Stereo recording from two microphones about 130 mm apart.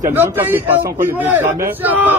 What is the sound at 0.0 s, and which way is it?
A man's voice, 15° right (ahead or behind).